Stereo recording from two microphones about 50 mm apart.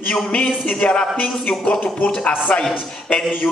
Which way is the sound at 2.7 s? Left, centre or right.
Left.